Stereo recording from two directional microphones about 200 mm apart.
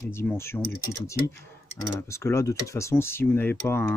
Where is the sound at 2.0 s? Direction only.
15° left (ahead or behind).